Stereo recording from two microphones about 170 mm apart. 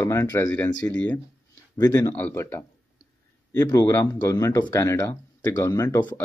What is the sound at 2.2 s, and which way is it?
Speech, 10° left (ahead or behind).